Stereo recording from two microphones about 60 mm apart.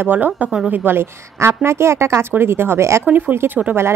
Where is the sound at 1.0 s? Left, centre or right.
Right.